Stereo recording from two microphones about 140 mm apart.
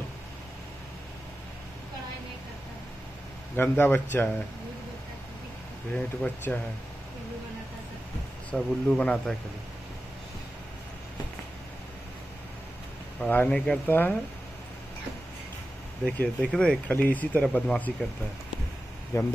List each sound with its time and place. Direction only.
3.5 s speech: 15° left (ahead or behind)
6.2 s speech: 15° left (ahead or behind)
8.5 s speech: 5° left (ahead or behind)
13.2 s speech: 10° left (ahead or behind)
16.1 s speech: 5° left (ahead or behind)
19.1 s speech: 20° left (ahead or behind)